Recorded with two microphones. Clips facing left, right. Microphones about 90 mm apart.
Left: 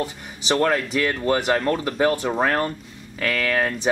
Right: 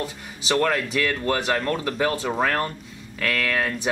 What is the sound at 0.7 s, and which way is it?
Speech, 25° left (ahead or behind).